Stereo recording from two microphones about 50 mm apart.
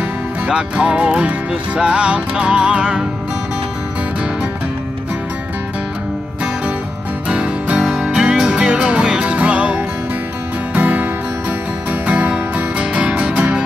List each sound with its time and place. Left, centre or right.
0.5 s music: centre
7.2 s music: right